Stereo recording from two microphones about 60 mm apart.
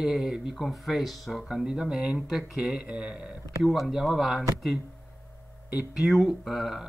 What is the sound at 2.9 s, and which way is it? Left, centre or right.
Speech, centre.